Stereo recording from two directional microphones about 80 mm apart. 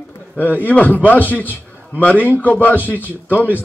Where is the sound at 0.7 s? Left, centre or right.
Left.